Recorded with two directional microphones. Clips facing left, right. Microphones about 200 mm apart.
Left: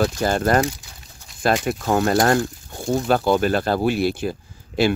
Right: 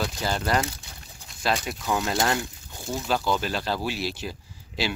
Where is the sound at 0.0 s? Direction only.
50° left (ahead or behind).